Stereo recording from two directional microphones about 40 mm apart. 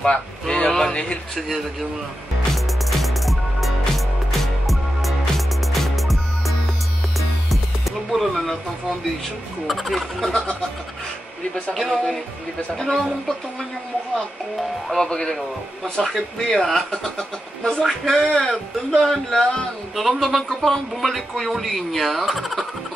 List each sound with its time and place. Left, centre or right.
0.0 s speech: left
0.9 s speech: left
2.5 s music: centre
8.1 s music: centre
9.7 s speech: centre
11.7 s speech: centre
14.9 s speech: centre
17.2 s speech: left
20.0 s speech: centre